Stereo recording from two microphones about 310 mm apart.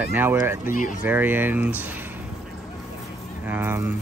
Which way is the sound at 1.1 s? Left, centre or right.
Centre.